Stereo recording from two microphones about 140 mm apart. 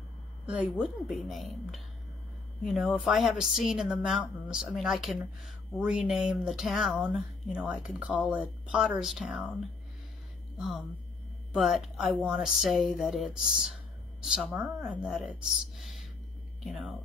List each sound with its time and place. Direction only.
0.7 s speech: centre (ahead or behind)
11.5 s speech: 5° right (ahead or behind)